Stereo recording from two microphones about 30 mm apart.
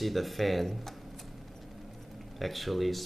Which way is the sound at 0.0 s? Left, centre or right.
Centre.